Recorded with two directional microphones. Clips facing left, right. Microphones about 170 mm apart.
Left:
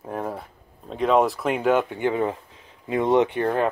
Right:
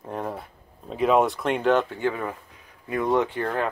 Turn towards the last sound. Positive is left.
turn(degrees=20)  # may be behind; listen again after turning